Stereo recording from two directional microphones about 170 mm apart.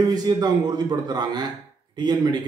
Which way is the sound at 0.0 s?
25° right (ahead or behind).